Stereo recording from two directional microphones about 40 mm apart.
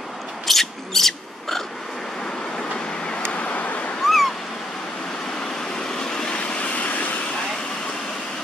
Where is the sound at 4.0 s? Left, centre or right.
Centre.